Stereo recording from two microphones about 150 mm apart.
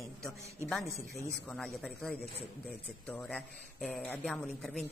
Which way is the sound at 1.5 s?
Centre (ahead or behind).